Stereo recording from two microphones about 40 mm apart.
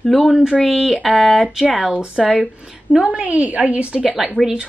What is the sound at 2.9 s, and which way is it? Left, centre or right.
A woman's voice, right.